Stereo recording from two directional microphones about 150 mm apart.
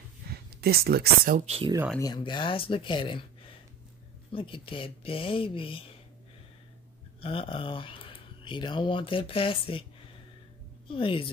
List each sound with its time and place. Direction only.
0.3 s speech: 90° right
1.4 s speech: 45° right (ahead or behind)
2.0 s speech: 30° left (ahead or behind)
7.2 s speech: 35° left (ahead or behind)
10.9 s speech: 35° left (ahead or behind)